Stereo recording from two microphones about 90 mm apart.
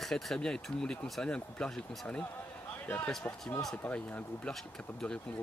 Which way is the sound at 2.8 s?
20° left (ahead or behind).